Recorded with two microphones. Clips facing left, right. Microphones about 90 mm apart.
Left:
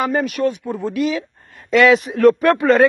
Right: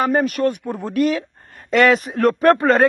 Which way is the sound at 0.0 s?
40° right (ahead or behind).